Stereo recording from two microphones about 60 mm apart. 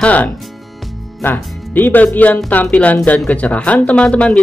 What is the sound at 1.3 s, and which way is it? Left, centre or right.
Speech, left.